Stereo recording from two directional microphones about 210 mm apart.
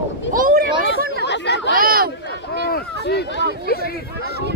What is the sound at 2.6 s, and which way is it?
Run, 50° left (ahead or behind).